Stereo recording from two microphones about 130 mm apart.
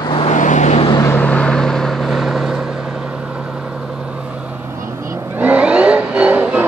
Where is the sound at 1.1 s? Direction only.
10° left (ahead or behind).